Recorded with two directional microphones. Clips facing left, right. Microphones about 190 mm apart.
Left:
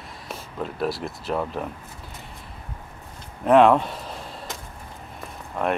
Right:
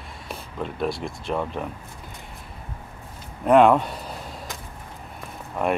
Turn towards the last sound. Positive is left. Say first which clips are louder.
# right 1 dB
turn(degrees=-5)  # may be behind; listen again after turning